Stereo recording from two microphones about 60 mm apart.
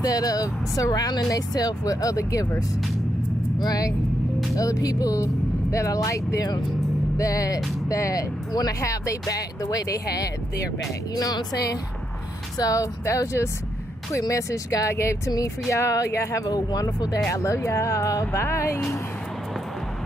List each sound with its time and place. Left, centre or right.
0.0 s speech: left
3.6 s speech: left
4.6 s speech: left
14.2 s speech: left
15.7 s speech: left
16.4 s speech: left
17.3 s speech: left
18.3 s speech: left